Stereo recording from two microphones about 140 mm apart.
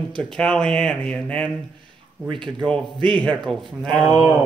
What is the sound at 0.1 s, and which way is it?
Speech, 5° left (ahead or behind).